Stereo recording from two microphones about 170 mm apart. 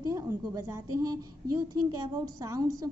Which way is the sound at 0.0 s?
20° right (ahead or behind).